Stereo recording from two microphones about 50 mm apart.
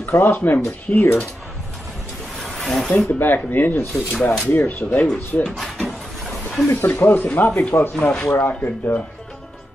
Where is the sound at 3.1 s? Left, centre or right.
Left.